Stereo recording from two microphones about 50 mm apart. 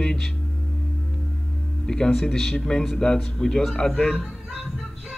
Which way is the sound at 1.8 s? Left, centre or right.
Centre.